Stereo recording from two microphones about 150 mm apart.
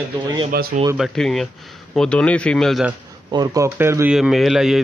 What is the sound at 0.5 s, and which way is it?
Speech, 80° right.